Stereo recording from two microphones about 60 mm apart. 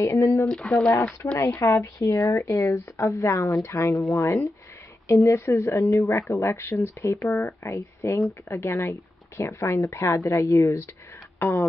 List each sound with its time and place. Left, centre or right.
0.0 s speech: left
0.5 s speech: centre
1.4 s speech: left
5.9 s speech: left
8.5 s speech: left
11.4 s music: left